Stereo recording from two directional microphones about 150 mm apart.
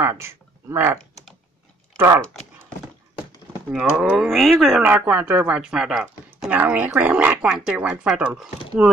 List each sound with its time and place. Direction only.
0.0 s speech: 15° right (ahead or behind)
2.0 s speech: 15° right (ahead or behind)
3.7 s speech: 10° right (ahead or behind)